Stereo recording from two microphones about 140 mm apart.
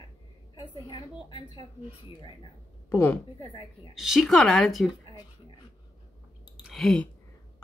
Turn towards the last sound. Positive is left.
turn(degrees=5)  # may be behind; listen again after turning